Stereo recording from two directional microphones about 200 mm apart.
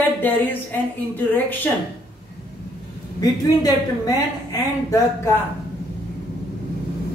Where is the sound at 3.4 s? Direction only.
20° left (ahead or behind).